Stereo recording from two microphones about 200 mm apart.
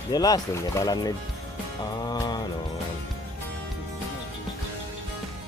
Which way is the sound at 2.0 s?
20° left (ahead or behind).